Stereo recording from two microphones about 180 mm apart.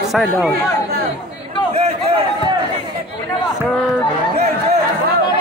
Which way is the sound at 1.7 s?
35° right (ahead or behind).